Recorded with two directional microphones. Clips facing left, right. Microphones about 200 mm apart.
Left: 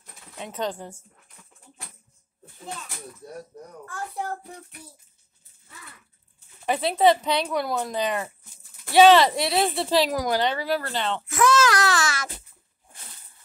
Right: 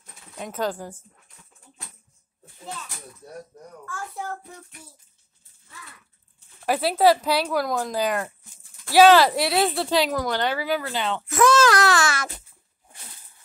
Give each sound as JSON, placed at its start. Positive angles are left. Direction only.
{"t": 0.4, "sound": "speech", "side_deg": -5}
{"t": 6.6, "sound": "speech", "side_deg": -5}
{"t": 11.2, "sound": "speech", "side_deg": -50}